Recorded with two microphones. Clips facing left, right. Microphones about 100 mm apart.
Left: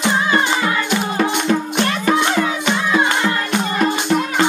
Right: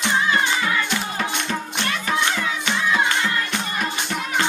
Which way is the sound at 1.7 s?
50° left (ahead or behind).